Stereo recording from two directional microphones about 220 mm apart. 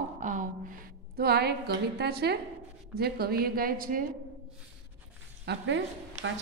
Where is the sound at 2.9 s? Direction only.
45° right (ahead or behind).